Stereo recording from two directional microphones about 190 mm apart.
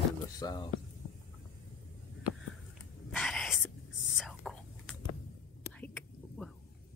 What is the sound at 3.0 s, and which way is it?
Whispering, centre (ahead or behind).